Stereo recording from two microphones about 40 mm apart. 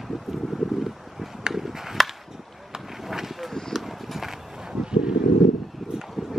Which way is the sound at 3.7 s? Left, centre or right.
Centre.